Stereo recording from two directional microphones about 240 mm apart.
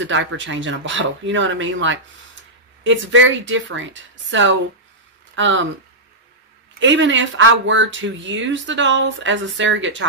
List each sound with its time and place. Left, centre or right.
0.0 s speech: right
6.8 s speech: right